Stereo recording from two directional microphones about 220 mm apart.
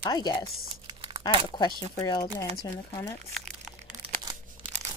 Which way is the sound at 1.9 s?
15° left (ahead or behind).